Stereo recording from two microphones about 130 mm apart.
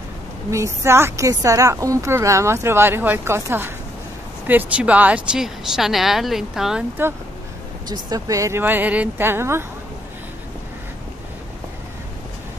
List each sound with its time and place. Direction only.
0.5 s speech: 20° right (ahead or behind); by 6.8 s 5° right (ahead or behind)
7.0 s speech: 15° right (ahead or behind)
7.9 s speech: 25° right (ahead or behind)